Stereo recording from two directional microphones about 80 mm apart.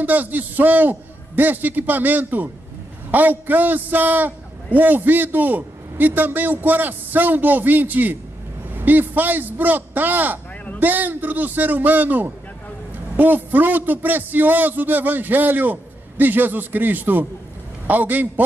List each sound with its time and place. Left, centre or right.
0.0 s a man's voice: right